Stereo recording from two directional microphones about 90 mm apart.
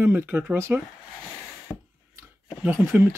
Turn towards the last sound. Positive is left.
turn(degrees=-25)  # may be behind; listen again after turning